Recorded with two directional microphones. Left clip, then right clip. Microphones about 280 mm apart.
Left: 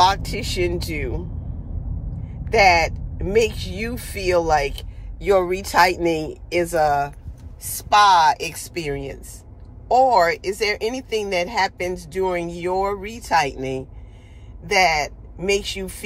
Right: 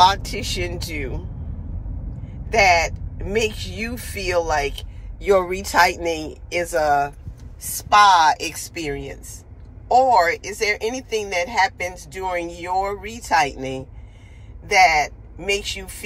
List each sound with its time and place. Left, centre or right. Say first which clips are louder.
0.0 s speech: right 2 dB; centre
2.5 s speech: left 1 dB; centre